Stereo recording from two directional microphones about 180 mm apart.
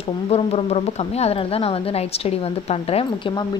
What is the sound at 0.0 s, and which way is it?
Speech, 35° left (ahead or behind).